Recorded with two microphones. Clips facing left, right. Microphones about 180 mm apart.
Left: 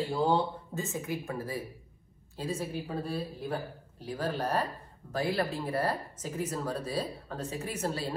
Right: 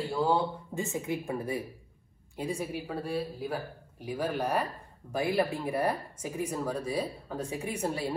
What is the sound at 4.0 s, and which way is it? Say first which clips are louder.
Speech: right 2 dB; 10° right (ahead or behind).